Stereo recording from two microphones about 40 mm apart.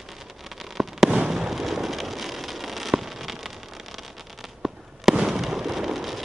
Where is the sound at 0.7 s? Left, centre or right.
Centre.